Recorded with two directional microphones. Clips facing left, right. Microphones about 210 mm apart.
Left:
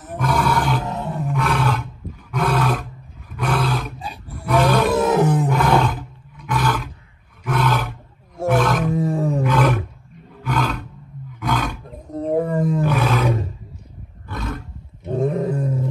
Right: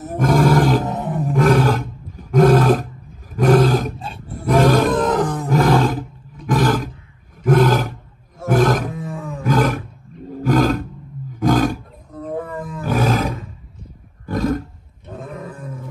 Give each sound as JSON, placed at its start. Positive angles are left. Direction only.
{"t": 0.2, "sound": "roar", "side_deg": -45}
{"t": 0.8, "sound": "roar", "side_deg": -15}
{"t": 1.2, "sound": "roar", "side_deg": -50}
{"t": 4.8, "sound": "wild animals", "side_deg": 10}
{"t": 5.6, "sound": "roar", "side_deg": -35}
{"t": 6.6, "sound": "roar", "side_deg": -50}
{"t": 8.5, "sound": "wild animals", "side_deg": -45}
{"t": 8.9, "sound": "roar", "side_deg": 30}
{"t": 9.5, "sound": "roar", "side_deg": -50}
{"t": 12.2, "sound": "wild animals", "side_deg": 30}
{"t": 12.8, "sound": "roar", "side_deg": -45}
{"t": 15.0, "sound": "roar", "side_deg": 30}